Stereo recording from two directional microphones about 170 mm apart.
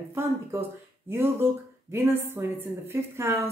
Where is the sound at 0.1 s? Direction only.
15° right (ahead or behind).